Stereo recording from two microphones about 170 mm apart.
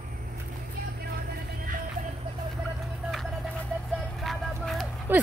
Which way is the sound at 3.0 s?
Centre (ahead or behind).